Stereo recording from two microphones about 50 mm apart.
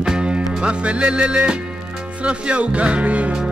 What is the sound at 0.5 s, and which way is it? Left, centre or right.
Speech, centre.